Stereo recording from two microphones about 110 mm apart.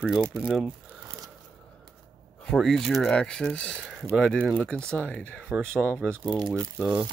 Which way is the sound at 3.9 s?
5° right (ahead or behind).